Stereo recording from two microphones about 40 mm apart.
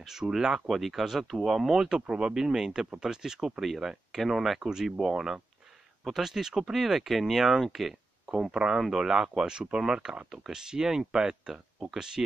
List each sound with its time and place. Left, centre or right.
0.0 s speech: centre
8.5 s speech: right
8.7 s speech: centre
10.3 s speech: centre